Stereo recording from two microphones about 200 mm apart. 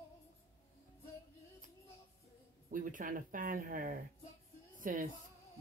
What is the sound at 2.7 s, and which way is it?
A woman's voice, 40° right (ahead or behind).